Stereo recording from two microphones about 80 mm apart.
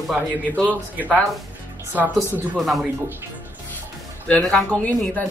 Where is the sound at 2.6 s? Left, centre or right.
Centre.